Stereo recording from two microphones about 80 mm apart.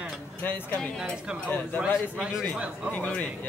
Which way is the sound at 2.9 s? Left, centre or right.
Centre.